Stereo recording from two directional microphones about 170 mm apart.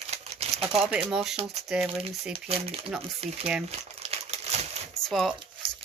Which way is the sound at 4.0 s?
40° right (ahead or behind).